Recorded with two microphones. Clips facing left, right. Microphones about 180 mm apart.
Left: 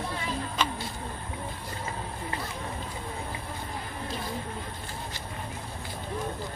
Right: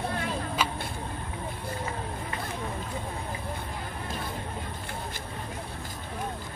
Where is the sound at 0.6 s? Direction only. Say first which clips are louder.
Left 1 dB; 10° right (ahead or behind).